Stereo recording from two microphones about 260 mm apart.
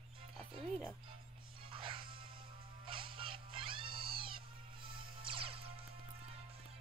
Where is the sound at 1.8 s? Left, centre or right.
Centre.